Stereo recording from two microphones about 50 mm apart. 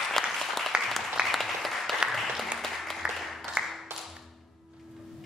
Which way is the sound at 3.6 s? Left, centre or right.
Right.